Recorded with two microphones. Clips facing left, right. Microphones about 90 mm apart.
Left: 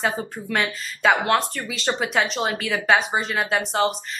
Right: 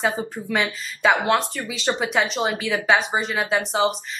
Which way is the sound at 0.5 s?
Centre (ahead or behind).